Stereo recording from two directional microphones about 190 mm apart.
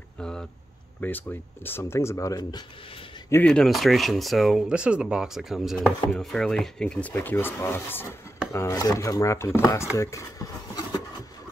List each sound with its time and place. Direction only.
0.2 s a sound: 5° left (ahead or behind)
1.0 s chopping: 10° left (ahead or behind)
3.3 s speech: 10° left (ahead or behind)
5.9 s chopping: 5° left (ahead or behind)
9.9 s speech: 15° left (ahead or behind)